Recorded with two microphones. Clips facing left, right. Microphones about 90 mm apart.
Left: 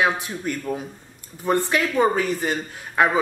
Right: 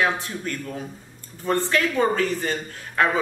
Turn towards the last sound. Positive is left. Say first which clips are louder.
# left 2 dB
turn(degrees=15)  # may be behind; listen again after turning